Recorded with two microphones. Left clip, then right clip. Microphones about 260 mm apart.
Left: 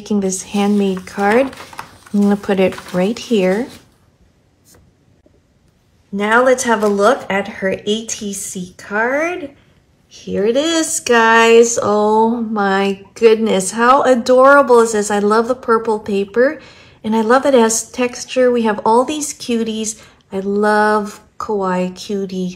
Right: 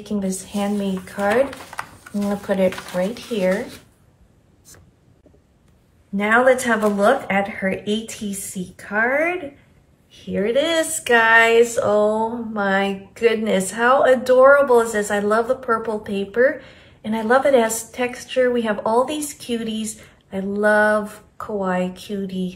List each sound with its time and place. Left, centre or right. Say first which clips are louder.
0.0 s speech: left 7 dB; left
2.4 s speech: left 4 dB; left
6.1 s speech: left 3 dB; centre